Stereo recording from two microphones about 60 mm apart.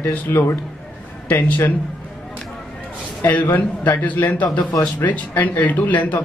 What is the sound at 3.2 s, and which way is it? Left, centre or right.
A man's voice, left.